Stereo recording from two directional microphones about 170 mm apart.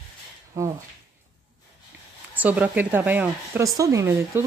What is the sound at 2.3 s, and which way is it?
Speech, 10° right (ahead or behind).